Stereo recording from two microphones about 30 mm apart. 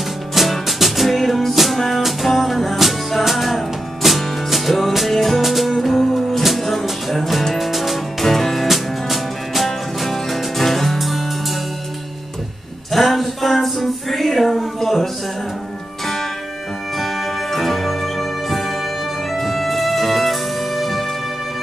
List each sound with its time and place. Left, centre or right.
0.3 s music: centre
8.3 s music: centre
12.9 s music: centre
16.9 s music: centre